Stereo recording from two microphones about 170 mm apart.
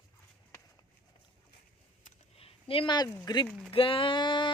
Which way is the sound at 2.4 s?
30° left (ahead or behind).